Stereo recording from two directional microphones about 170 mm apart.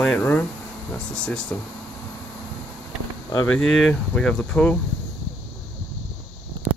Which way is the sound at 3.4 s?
5° left (ahead or behind).